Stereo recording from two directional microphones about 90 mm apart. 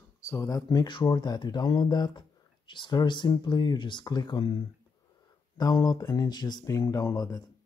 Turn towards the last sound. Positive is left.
turn(degrees=45)  # may be behind; listen again after turning